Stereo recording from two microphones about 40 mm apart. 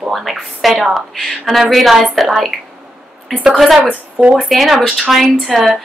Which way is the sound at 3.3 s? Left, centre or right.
Centre.